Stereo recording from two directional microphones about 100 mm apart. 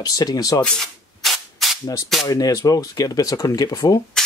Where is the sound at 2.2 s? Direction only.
35° left (ahead or behind).